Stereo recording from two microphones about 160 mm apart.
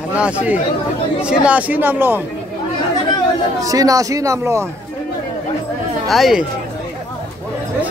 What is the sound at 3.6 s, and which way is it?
Speech, 20° right (ahead or behind).